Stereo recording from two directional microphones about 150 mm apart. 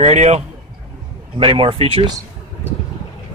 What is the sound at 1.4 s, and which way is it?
Speech, 35° right (ahead or behind).